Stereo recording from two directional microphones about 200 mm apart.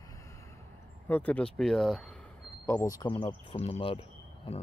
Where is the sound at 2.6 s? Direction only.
15° left (ahead or behind).